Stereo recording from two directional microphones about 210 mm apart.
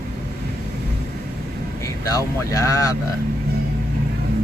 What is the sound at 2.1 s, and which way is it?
Speech, 15° left (ahead or behind).